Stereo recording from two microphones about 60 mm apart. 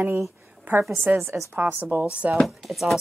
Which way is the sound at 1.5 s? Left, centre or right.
Right.